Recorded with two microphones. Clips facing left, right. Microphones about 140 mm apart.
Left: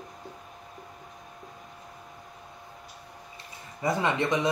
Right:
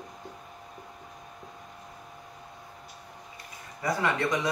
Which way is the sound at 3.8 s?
20° left (ahead or behind).